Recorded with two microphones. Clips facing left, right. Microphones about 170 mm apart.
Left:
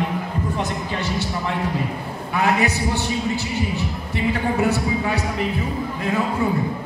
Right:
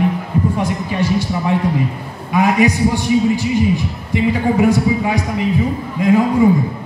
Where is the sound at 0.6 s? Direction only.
10° right (ahead or behind).